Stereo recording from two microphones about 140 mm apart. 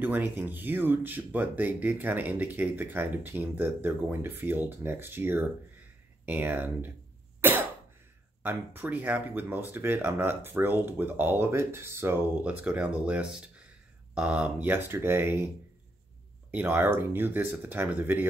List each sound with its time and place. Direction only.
0.0 s speech: 15° right (ahead or behind)
16.5 s speech: 15° right (ahead or behind)